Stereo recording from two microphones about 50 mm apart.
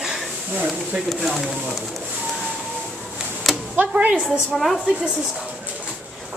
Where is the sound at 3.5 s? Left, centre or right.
Centre.